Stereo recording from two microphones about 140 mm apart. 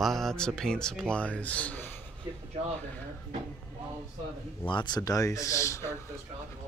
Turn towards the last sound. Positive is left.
turn(degrees=20)  # may be behind; listen again after turning